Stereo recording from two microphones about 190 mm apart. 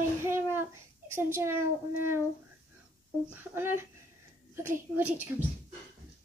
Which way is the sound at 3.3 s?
10° right (ahead or behind).